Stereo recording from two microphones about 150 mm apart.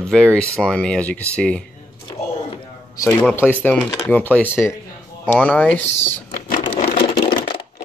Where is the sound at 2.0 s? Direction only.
30° left (ahead or behind).